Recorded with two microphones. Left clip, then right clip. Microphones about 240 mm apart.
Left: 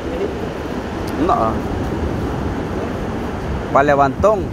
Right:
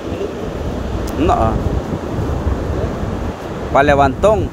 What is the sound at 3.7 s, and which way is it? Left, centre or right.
Speech, right.